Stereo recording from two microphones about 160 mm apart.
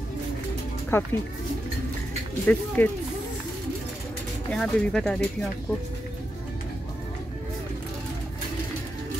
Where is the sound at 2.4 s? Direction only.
10° left (ahead or behind).